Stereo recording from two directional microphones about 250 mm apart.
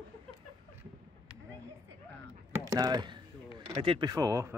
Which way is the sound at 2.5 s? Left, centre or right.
Centre.